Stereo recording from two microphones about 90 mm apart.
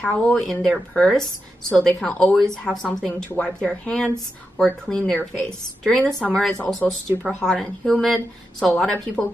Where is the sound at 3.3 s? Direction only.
15° left (ahead or behind).